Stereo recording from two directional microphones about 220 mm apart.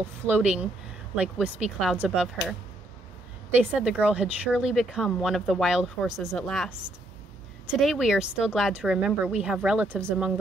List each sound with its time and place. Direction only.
0.3 s speech: 5° right (ahead or behind)
3.5 s speech: 5° right (ahead or behind)